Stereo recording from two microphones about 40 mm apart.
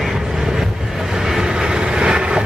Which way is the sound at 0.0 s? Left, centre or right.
Centre.